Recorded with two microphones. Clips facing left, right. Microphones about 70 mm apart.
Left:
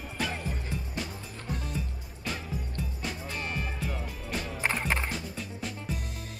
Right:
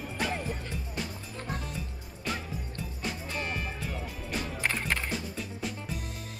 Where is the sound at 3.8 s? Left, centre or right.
Centre.